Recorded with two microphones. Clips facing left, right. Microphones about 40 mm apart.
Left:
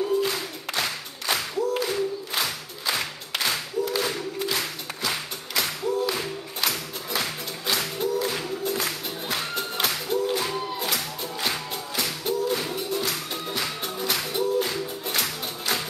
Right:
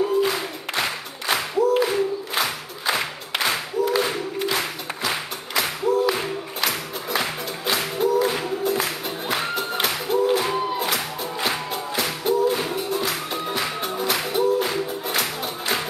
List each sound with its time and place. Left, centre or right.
0.2 s music: centre